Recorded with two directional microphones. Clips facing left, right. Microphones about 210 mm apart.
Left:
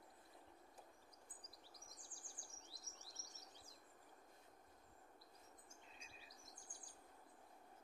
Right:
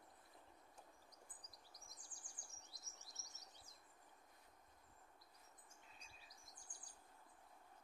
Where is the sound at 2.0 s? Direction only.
30° left (ahead or behind).